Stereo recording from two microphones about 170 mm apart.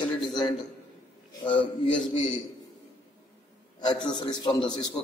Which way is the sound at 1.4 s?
30° left (ahead or behind).